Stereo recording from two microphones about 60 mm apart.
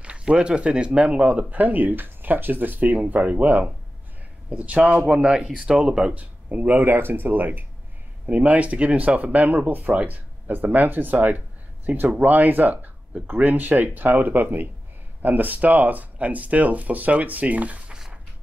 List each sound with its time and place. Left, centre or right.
0.0 s speech: centre
6.1 s speech: right
17.9 s a sound: centre